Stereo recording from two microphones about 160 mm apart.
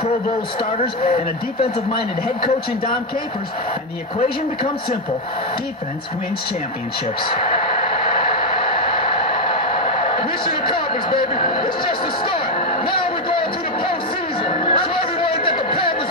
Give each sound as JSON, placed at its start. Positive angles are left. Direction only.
{"t": 0.7, "sound": "speech", "side_deg": 35}
{"t": 7.5, "sound": "a sound", "side_deg": 30}
{"t": 14.4, "sound": "chatter", "side_deg": 30}